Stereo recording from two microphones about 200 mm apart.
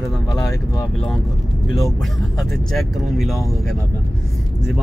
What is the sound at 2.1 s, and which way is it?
Speech, centre (ahead or behind).